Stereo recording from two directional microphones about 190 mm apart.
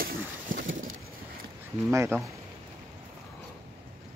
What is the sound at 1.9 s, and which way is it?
Speech, 15° right (ahead or behind).